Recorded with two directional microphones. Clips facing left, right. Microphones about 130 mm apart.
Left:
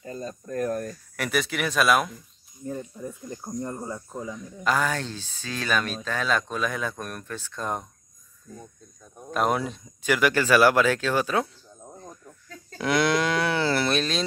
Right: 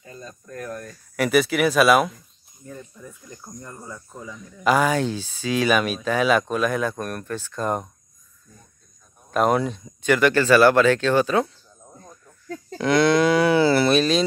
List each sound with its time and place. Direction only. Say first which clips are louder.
0.0 s speech: left 6 dB; 35° left (ahead or behind)
1.1 s speech: right 8 dB; 5° right (ahead or behind)
2.8 s speech: left 6 dB; 30° left (ahead or behind)
4.6 s speech: right 6 dB; 10° right (ahead or behind)
9.3 s speech: right 5 dB; centre (ahead or behind)
12.7 s speech: right 5 dB; 5° left (ahead or behind)